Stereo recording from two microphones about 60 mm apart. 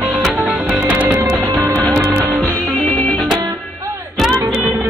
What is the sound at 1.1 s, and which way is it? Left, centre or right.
Music, right.